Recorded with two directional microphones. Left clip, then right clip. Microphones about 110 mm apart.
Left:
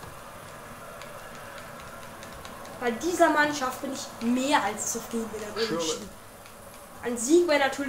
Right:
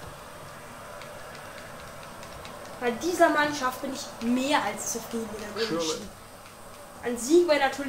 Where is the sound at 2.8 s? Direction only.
15° left (ahead or behind).